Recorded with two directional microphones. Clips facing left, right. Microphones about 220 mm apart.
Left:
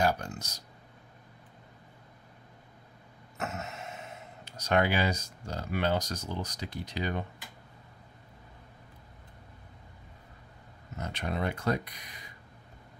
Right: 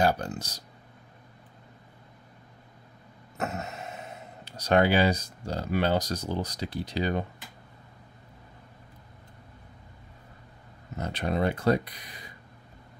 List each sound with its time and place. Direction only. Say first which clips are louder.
0.0 s speech: right 3 dB; 35° right (ahead or behind)
3.3 s a sound: right 4 dB; 35° right (ahead or behind)
4.5 s speech: right 5 dB; 35° right (ahead or behind)
11.0 s speech: right 6 dB; 35° right (ahead or behind)